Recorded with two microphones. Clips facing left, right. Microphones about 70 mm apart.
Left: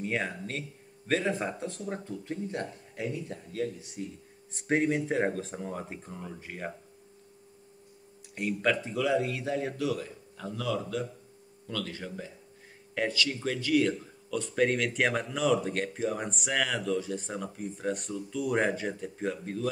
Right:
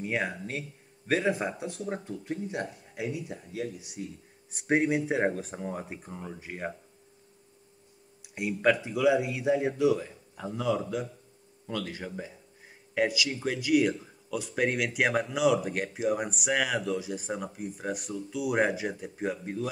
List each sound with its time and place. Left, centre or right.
0.0 s speech: centre
8.4 s speech: centre